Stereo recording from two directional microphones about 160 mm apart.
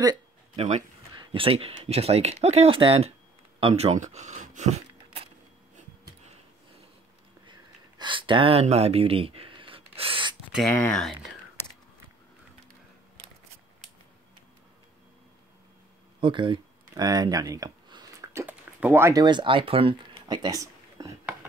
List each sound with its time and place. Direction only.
0.6 s speech: 45° right (ahead or behind)
1.1 s speech: 30° right (ahead or behind)
8.0 s speech: 30° right (ahead or behind)
10.7 s speech: centre (ahead or behind)
16.2 s a sound: 30° right (ahead or behind)
19.2 s speech: 30° right (ahead or behind)